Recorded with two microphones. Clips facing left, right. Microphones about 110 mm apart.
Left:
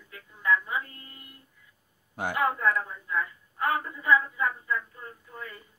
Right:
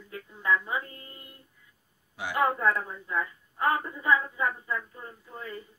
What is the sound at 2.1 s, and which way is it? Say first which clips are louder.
Speech: left 3 dB; 50° left (ahead or behind).